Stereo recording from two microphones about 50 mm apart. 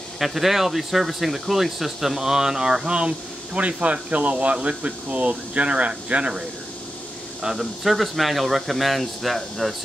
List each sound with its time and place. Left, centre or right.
0.2 s speech: centre; by 6.4 s right
7.5 s speech: centre